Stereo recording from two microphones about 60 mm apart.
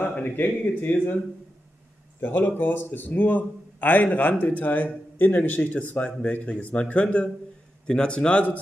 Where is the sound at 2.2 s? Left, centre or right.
Left.